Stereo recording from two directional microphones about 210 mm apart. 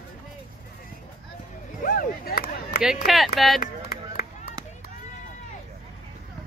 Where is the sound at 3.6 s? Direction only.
45° left (ahead or behind).